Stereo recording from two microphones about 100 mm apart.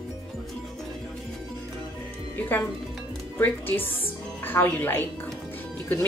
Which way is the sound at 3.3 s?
20° left (ahead or behind).